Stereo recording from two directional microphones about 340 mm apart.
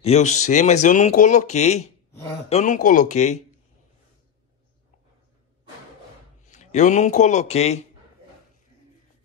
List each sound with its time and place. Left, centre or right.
0.0 s speech: centre
6.4 s a man's voice: centre